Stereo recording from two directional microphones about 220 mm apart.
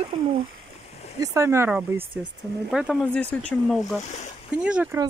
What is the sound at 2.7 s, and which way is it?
Speech, centre (ahead or behind).